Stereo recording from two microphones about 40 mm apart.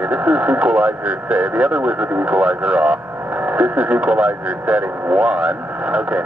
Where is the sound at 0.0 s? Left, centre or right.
Right.